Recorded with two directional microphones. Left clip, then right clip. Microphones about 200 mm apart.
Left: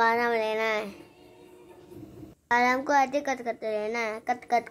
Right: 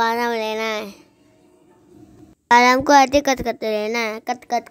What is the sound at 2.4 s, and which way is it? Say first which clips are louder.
A woman's voice: right 11 dB; 40° right (ahead or behind).